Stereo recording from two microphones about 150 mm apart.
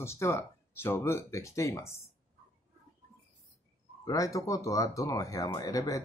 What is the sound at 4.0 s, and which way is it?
Speech, 20° left (ahead or behind).